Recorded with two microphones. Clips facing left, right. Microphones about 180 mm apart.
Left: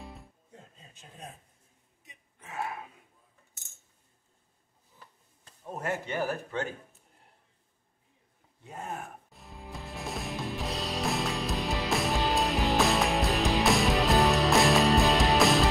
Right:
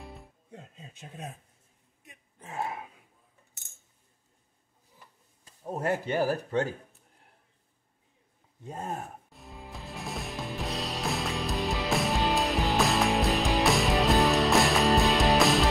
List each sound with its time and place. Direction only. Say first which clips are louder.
2.4 s speech: right 2 dB; 25° right (ahead or behind)
5.7 s speech: right 4 dB; 35° right (ahead or behind)
8.6 s speech: right 3 dB; 40° right (ahead or behind)
9.3 s music: even; centre (ahead or behind)